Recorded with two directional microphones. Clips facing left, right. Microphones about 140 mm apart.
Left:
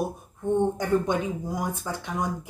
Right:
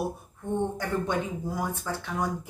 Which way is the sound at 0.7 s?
15° left (ahead or behind).